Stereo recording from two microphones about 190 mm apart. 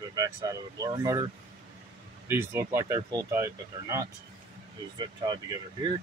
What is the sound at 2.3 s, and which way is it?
Speech, 15° right (ahead or behind).